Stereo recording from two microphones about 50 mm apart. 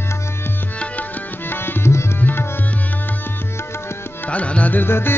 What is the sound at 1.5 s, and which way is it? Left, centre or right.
Tabla, left.